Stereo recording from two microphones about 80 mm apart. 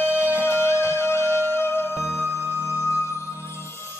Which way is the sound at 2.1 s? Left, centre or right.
Right.